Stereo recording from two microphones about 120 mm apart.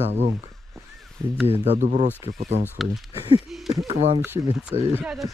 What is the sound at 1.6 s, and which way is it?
Speech, 80° right.